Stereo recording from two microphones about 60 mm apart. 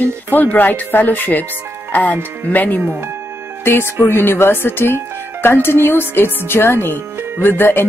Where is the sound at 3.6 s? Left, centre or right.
Left.